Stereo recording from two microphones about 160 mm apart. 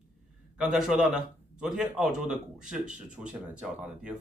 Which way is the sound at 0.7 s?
5° right (ahead or behind).